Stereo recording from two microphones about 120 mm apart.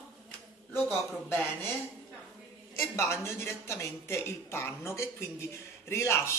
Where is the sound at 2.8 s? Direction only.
25° left (ahead or behind).